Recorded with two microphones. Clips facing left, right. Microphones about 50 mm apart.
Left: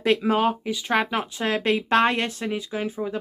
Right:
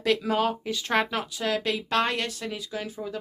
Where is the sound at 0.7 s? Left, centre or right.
Centre.